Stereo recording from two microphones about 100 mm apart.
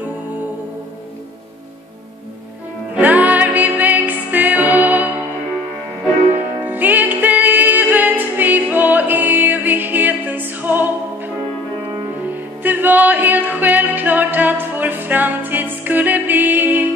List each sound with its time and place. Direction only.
2.9 s music: 15° right (ahead or behind)
6.3 s music: 20° right (ahead or behind)
12.6 s music: 20° right (ahead or behind)